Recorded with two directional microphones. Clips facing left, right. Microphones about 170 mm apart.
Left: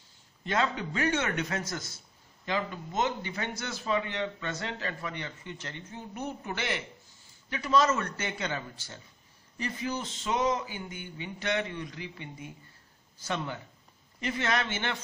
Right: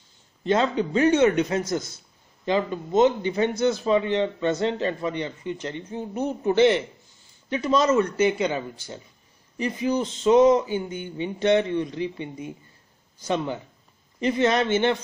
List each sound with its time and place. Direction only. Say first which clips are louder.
0.5 s a man's voice: right 8 dB; 25° right (ahead or behind)